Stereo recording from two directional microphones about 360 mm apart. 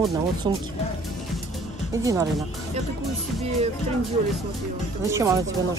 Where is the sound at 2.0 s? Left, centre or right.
Centre.